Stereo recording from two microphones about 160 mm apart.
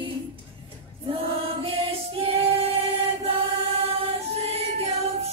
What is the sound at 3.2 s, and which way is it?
Choir, 35° right (ahead or behind).